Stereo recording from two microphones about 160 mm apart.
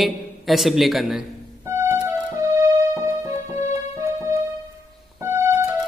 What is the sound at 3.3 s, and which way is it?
Music, 45° left (ahead or behind).